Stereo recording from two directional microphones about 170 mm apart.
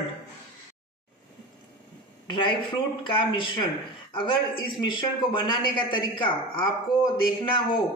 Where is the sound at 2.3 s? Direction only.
30° left (ahead or behind).